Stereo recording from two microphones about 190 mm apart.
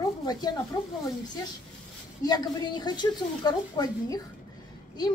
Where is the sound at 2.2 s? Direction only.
20° left (ahead or behind).